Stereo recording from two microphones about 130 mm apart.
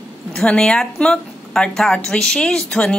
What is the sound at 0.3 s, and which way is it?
A woman's voice, 5° left (ahead or behind).